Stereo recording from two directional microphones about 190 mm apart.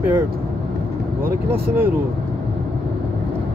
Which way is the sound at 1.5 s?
10° right (ahead or behind).